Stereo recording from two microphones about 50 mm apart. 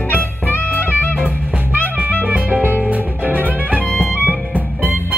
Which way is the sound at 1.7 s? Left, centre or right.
Right.